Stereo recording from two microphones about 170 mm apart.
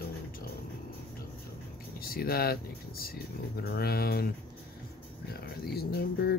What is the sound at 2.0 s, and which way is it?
Speech, 60° left (ahead or behind).